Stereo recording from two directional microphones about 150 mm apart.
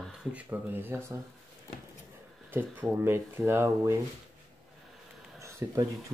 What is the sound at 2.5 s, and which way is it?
Speech, 15° right (ahead or behind).